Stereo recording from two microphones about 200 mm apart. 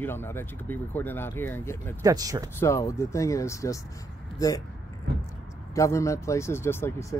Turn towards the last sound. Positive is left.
turn(degrees=10)  # may be behind; listen again after turning